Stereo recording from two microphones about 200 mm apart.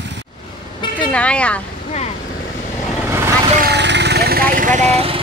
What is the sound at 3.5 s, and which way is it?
Vehicle, 55° right (ahead or behind).